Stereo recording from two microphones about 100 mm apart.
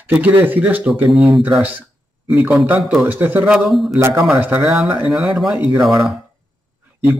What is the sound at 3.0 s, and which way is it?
Speech, 20° right (ahead or behind).